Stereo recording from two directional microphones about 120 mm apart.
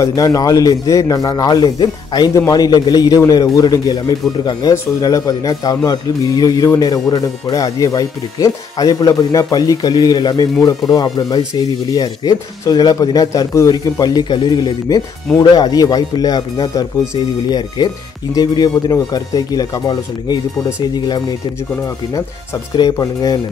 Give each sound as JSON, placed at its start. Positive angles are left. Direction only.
{"t": 0.0, "sound": "a man's voice", "side_deg": 30}
{"t": 22.8, "sound": "a man's voice", "side_deg": 30}